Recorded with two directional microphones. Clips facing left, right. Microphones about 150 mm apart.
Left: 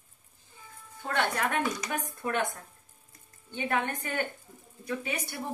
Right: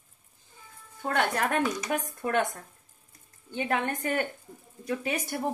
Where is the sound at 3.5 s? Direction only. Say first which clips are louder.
Right 2 dB; 45° right (ahead or behind).